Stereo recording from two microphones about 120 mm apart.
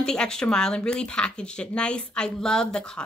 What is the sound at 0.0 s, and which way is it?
Speech, 5° left (ahead or behind).